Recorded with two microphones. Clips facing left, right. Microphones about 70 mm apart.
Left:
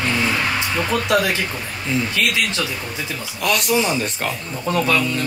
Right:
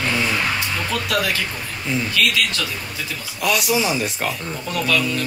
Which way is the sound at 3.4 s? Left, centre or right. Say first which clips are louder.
Left 1 dB; centre.